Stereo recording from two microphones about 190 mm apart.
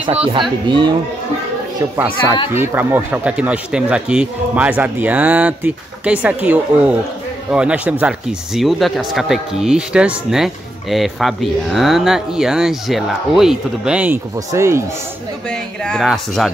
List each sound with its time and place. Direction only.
0.3 s speech: 25° right (ahead or behind)
2.5 s speech: 10° right (ahead or behind)
15.5 s speech: 5° left (ahead or behind)